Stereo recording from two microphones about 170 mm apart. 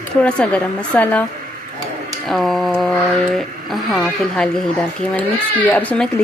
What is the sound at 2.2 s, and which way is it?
Speech, centre (ahead or behind).